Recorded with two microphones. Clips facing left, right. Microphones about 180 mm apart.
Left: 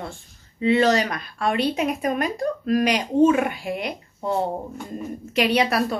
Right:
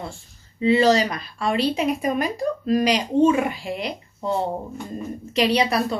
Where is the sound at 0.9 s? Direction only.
55° left (ahead or behind).